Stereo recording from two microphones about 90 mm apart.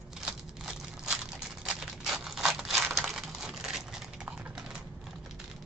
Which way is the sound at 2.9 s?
Centre (ahead or behind).